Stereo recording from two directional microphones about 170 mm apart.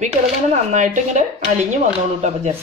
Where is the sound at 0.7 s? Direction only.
45° right (ahead or behind).